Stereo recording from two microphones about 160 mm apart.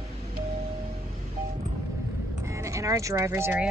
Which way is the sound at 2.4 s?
20° right (ahead or behind).